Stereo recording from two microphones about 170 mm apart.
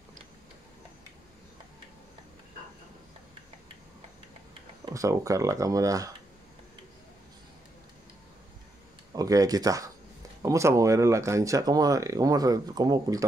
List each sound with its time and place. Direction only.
4.8 s speech: 20° right (ahead or behind)
9.1 s speech: 20° right (ahead or behind)